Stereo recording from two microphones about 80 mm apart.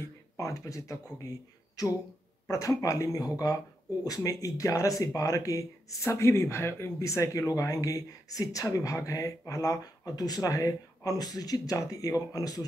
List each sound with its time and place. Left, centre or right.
0.0 s speech: left